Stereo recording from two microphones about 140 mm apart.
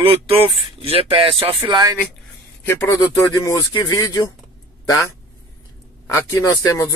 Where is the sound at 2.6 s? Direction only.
20° left (ahead or behind).